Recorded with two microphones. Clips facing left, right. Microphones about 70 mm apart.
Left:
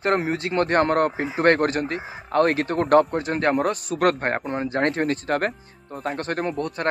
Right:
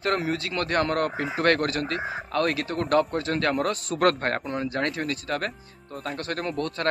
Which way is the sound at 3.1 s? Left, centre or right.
Left.